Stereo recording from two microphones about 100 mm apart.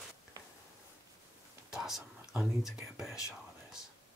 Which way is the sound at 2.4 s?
5° right (ahead or behind).